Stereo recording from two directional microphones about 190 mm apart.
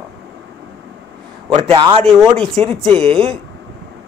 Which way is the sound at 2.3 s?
5° left (ahead or behind).